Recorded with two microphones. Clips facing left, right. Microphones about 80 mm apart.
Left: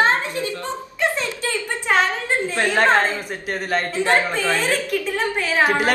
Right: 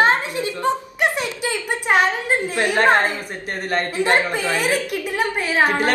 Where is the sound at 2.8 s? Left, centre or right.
Centre.